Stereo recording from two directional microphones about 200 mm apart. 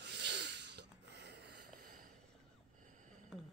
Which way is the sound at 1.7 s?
40° right (ahead or behind).